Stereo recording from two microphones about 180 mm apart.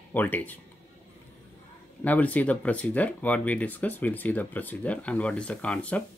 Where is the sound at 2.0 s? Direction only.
10° left (ahead or behind).